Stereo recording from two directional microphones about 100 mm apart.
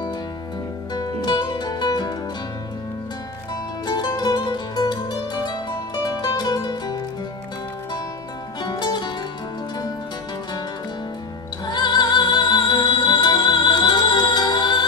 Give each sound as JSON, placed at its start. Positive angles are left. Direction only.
{"t": 0.9, "sound": "music", "side_deg": 45}
{"t": 3.8, "sound": "music", "side_deg": 45}
{"t": 8.5, "sound": "music", "side_deg": 45}
{"t": 11.6, "sound": "music", "side_deg": 45}